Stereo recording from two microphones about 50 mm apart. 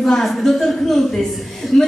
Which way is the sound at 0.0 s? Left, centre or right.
Centre.